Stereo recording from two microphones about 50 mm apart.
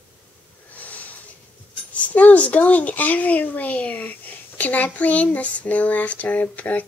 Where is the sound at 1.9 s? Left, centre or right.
Left.